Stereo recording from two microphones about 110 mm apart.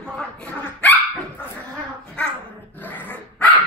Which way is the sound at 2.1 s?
15° left (ahead or behind).